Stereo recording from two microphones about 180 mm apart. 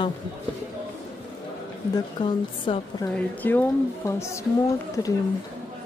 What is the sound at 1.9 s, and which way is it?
A woman's voice, 25° left (ahead or behind).